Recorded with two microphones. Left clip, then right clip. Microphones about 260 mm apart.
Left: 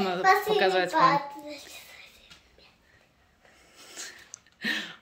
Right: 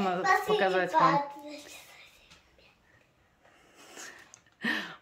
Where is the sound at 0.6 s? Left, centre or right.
Centre.